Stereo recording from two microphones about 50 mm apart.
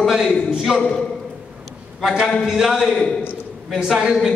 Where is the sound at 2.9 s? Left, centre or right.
Centre.